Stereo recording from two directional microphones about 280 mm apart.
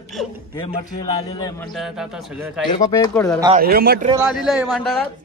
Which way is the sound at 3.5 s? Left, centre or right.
Right.